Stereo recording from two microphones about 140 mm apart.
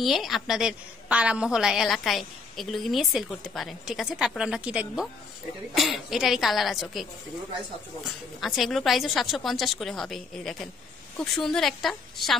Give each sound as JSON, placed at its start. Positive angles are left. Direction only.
{"t": 0.0, "sound": "a woman's voice", "side_deg": 0}